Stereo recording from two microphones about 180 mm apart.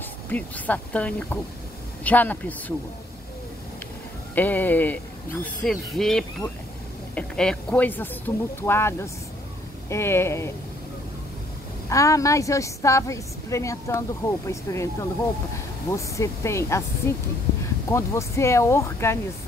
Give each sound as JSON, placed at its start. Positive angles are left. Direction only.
{"t": 0.3, "sound": "a woman's voice", "side_deg": 10}
{"t": 4.4, "sound": "a woman's voice", "side_deg": 10}
{"t": 11.9, "sound": "a woman's voice", "side_deg": 15}